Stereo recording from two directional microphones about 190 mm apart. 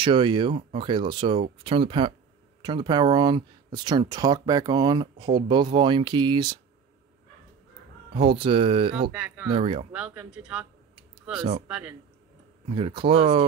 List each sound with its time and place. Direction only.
0.0 s speech: 25° right (ahead or behind)
8.1 s speech: 30° right (ahead or behind)
9.1 s speech: 5° right (ahead or behind)
9.5 s speech: 30° right (ahead or behind)
9.9 s a man's voice: 5° right (ahead or behind)
12.6 s speech: 30° right (ahead or behind)